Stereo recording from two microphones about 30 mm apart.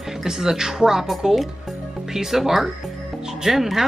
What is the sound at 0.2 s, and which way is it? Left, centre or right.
Speech, centre.